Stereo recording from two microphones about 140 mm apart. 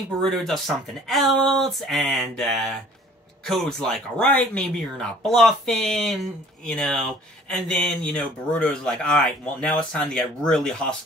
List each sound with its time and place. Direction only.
0.2 s speech: 5° left (ahead or behind)